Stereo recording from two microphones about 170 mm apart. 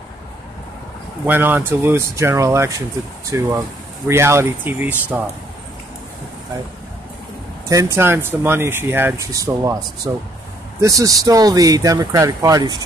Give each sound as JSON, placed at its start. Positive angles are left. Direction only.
{"t": 1.2, "sound": "speech", "side_deg": -10}
{"t": 7.6, "sound": "speech", "side_deg": -20}